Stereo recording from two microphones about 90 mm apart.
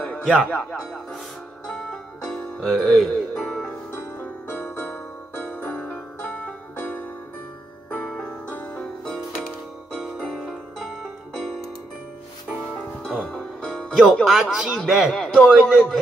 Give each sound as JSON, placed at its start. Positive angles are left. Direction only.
{"t": 0.2, "sound": "speech", "side_deg": 5}
{"t": 0.5, "sound": "speech", "side_deg": 20}
{"t": 1.7, "sound": "music", "side_deg": 10}
{"t": 3.9, "sound": "music", "side_deg": 25}
{"t": 12.5, "sound": "music", "side_deg": 10}
{"t": 13.9, "sound": "speech", "side_deg": 0}
{"t": 15.2, "sound": "a man's voice", "side_deg": 10}
{"t": 15.5, "sound": "speech", "side_deg": -5}